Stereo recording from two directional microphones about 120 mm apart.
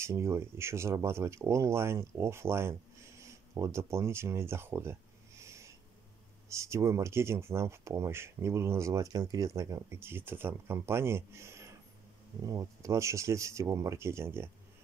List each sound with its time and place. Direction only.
0.0 s speech: 25° right (ahead or behind)